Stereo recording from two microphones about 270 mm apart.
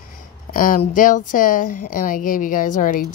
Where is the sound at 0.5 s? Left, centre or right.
Left.